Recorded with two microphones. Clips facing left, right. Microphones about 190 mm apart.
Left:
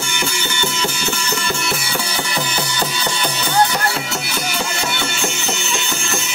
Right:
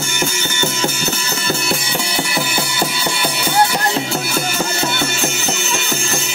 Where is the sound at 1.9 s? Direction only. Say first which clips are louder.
Right 2 dB; 15° right (ahead or behind).